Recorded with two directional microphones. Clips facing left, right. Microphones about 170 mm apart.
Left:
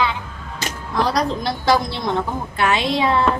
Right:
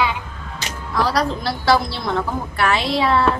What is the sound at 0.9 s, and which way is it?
A woman's voice, 20° left (ahead or behind).